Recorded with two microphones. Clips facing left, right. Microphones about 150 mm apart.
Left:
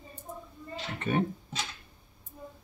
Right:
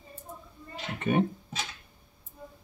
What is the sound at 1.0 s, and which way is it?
Speech, 15° right (ahead or behind).